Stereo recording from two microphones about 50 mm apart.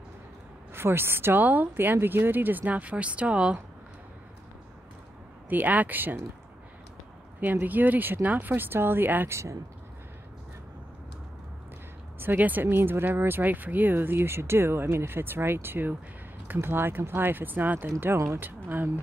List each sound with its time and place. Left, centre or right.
0.7 s speech: right
2.0 s speech: right
5.5 s speech: right
7.6 s speech: right
9.3 s speech: right
12.2 s speech: right
12.6 s speech: right
18.1 s speech: right
18.4 s speech: right